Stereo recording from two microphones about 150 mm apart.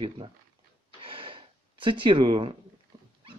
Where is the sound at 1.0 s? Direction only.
35° right (ahead or behind).